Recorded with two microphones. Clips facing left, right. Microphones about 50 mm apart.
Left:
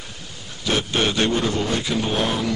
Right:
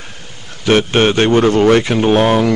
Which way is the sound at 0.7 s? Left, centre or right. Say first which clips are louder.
Right 10 dB; right.